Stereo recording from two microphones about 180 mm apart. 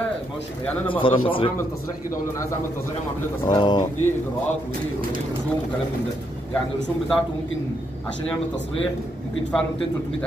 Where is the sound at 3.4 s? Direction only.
25° left (ahead or behind).